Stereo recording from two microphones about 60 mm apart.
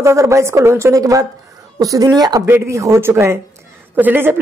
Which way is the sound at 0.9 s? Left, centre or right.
Right.